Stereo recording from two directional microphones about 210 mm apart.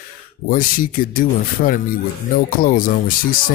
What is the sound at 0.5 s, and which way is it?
Speech, 40° left (ahead or behind).